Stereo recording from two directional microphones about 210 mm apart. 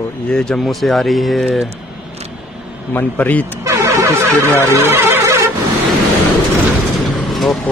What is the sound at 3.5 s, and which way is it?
Vehicle, 15° right (ahead or behind).